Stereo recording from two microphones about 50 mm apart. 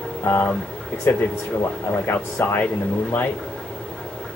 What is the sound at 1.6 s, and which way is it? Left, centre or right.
Speech, left.